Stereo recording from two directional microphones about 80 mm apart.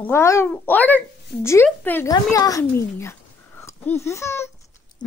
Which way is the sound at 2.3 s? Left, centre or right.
Left.